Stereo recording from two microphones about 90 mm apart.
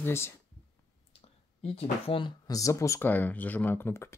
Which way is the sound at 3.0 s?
20° left (ahead or behind).